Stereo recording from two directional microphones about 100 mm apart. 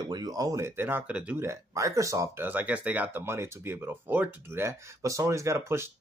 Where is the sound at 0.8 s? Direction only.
20° right (ahead or behind).